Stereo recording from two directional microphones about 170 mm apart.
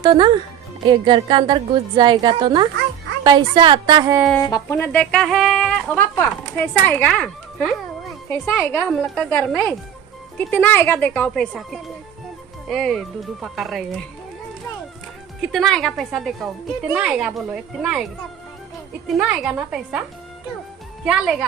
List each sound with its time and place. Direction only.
0.0 s a woman's voice: 25° right (ahead or behind)
4.4 s speech: 20° left (ahead or behind); by 14.0 s centre (ahead or behind)
15.5 s speech: centre (ahead or behind)
19.0 s speech: centre (ahead or behind)
21.0 s speech: 5° right (ahead or behind)